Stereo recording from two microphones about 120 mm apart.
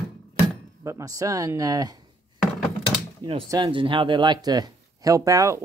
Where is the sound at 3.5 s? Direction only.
45° right (ahead or behind); by 5.6 s 25° right (ahead or behind).